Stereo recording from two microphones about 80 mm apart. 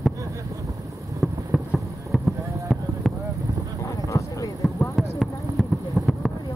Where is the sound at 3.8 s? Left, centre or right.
Left.